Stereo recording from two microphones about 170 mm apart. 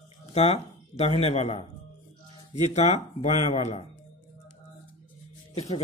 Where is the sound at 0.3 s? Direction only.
35° left (ahead or behind).